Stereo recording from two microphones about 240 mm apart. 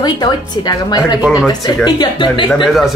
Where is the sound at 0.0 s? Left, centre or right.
Centre.